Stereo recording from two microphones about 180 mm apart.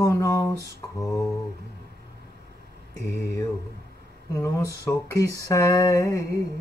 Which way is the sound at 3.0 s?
15° left (ahead or behind).